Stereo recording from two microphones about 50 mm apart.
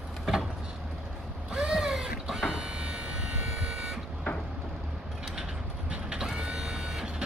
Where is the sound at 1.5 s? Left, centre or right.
Centre.